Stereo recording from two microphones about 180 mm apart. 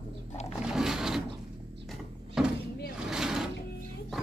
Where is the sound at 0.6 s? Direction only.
5° right (ahead or behind).